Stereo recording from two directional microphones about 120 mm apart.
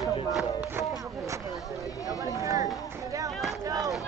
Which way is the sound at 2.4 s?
30° right (ahead or behind).